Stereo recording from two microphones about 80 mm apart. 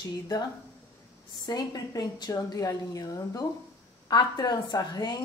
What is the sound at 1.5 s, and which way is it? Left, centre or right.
A woman's voice, left.